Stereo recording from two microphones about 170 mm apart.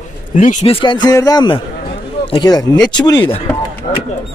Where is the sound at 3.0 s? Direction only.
25° left (ahead or behind).